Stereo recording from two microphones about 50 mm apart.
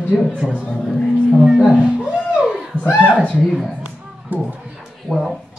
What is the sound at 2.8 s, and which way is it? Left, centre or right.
Speech, left.